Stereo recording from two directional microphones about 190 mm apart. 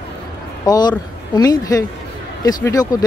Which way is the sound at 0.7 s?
20° left (ahead or behind).